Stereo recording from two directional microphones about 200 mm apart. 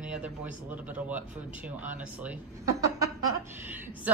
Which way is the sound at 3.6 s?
10° right (ahead or behind).